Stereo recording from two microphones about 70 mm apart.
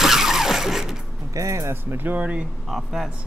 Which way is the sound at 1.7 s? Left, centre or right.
Right.